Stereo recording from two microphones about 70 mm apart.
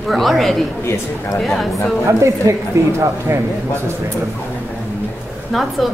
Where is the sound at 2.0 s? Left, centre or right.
Right.